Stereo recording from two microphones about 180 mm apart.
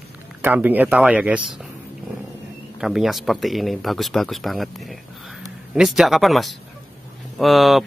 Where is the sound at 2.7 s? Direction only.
Centre (ahead or behind).